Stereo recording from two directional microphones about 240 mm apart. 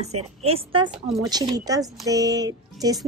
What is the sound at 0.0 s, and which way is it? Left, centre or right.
A woman's voice, right.